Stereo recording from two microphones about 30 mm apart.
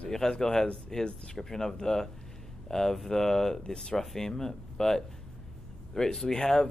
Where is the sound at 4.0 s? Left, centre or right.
Centre.